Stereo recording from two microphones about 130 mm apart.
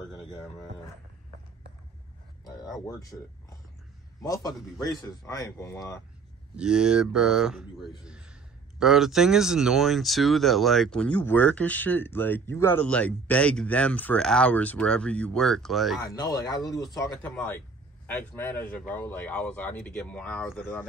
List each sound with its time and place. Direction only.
2.4 s a sound: 30° left (ahead or behind)
2.9 s speech: 25° left (ahead or behind)
4.2 s speech: 30° left (ahead or behind)
6.5 s speech: 5° right (ahead or behind)
16.1 s speech: 30° left (ahead or behind)
17.2 s speech: 15° left (ahead or behind)